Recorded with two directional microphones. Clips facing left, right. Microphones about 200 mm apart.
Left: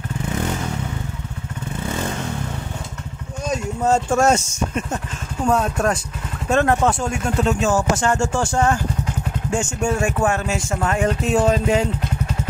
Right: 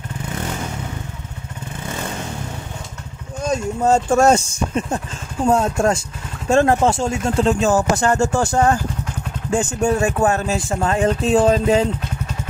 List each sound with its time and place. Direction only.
3.4 s speech: 30° right (ahead or behind)